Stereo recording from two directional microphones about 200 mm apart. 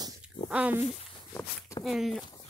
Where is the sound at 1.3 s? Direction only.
10° left (ahead or behind).